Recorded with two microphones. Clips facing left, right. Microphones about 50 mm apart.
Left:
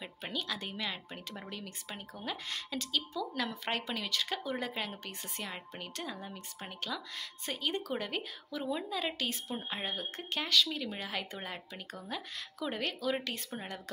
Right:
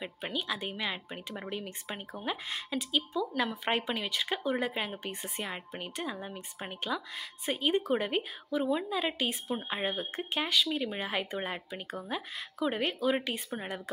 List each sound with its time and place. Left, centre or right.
0.0 s speech: centre